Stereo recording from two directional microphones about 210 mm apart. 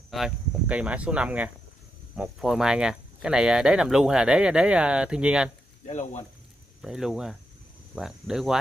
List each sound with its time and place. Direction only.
0.1 s speech: 5° right (ahead or behind)
5.9 s speech: 35° left (ahead or behind)
6.8 s speech: centre (ahead or behind)